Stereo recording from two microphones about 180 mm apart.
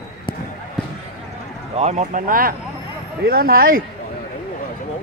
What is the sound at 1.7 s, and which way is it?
Speech, 35° right (ahead or behind).